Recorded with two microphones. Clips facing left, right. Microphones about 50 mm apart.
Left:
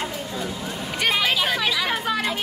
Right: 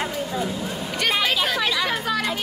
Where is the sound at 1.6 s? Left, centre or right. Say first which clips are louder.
Right 1 dB; centre.